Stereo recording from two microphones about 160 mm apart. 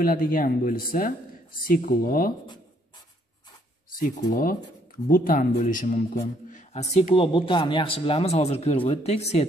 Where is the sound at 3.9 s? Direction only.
60° left (ahead or behind).